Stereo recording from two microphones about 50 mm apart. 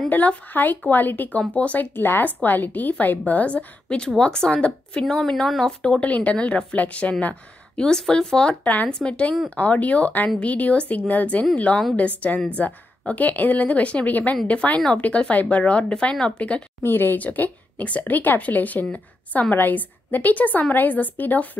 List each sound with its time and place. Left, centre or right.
0.1 s a woman's voice: left
2.0 s a woman's voice: left
4.2 s speech: centre
6.0 s speech: left
7.8 s speech: centre
9.6 s a woman's voice: left
16.8 s speech: left
17.2 s a woman's voice: left